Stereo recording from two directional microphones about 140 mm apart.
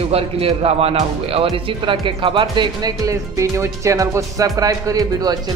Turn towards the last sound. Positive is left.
turn(degrees=-25)  # may be behind; listen again after turning